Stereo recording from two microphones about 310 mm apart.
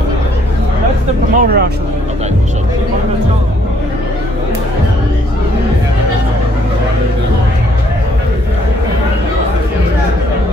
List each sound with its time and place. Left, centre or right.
1.3 s speech: right